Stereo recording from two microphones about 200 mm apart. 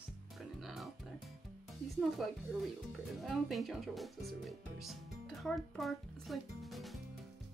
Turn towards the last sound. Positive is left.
turn(degrees=0)  # may be behind; listen again after turning